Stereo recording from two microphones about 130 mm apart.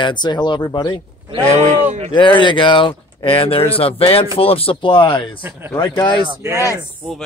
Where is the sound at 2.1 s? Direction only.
40° left (ahead or behind).